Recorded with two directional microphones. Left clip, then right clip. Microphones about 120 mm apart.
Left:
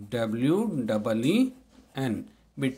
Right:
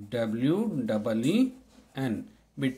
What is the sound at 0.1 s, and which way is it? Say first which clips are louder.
Speech: left 2 dB; 25° left (ahead or behind).